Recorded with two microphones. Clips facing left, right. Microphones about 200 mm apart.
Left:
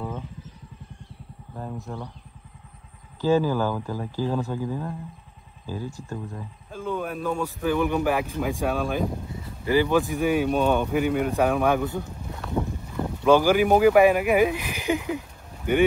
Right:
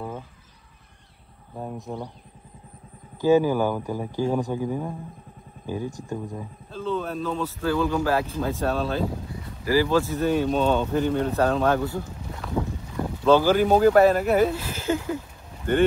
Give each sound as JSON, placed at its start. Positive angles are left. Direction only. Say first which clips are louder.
{"t": 1.5, "sound": "speech", "louder": "right 1 dB", "side_deg": -10}
{"t": 3.2, "sound": "speech", "louder": "right 3 dB", "side_deg": -15}
{"t": 6.7, "sound": "speech", "louder": "right 1 dB", "side_deg": 10}
{"t": 12.3, "sound": "boat", "louder": "even", "side_deg": 0}
{"t": 13.2, "sound": "speech", "louder": "even", "side_deg": 15}